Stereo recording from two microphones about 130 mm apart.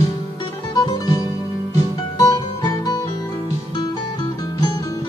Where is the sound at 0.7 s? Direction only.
30° left (ahead or behind).